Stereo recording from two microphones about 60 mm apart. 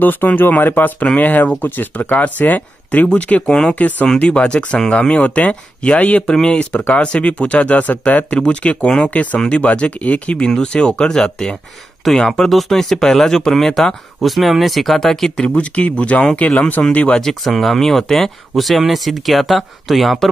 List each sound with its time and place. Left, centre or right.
0.0 s speech: left; by 15.4 s centre
15.4 s speech: left
17.1 s speech: centre